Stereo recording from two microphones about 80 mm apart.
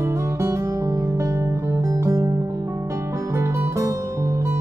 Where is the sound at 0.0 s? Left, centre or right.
Right.